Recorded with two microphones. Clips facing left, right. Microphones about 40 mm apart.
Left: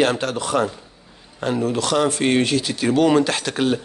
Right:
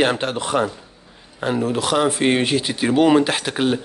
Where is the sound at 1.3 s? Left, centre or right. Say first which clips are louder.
Even; centre.